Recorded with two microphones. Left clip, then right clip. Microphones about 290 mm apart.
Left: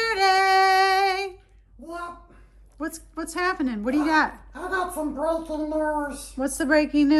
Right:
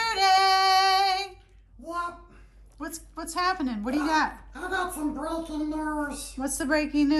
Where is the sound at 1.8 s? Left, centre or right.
Centre.